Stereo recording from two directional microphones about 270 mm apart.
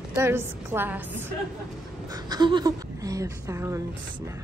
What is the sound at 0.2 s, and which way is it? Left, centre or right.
A woman's voice, centre.